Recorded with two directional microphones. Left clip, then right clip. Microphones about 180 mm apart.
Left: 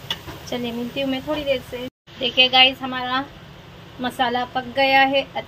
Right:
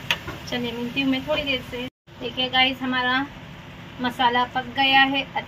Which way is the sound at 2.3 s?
15° left (ahead or behind).